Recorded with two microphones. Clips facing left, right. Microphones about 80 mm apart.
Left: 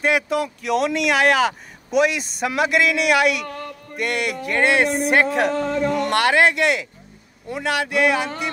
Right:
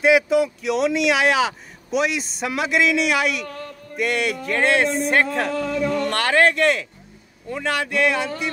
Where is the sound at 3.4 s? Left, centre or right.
Left.